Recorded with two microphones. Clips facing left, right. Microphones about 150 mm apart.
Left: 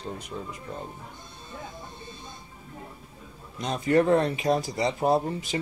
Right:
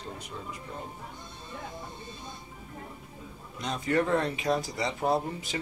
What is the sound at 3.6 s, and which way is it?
Speech, 25° left (ahead or behind).